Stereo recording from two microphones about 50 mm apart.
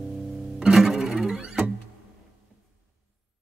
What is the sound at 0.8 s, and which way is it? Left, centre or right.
Music, centre.